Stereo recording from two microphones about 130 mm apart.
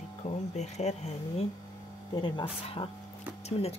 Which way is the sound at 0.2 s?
60° left (ahead or behind).